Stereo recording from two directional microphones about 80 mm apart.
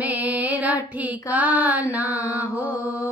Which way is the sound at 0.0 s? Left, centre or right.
Centre.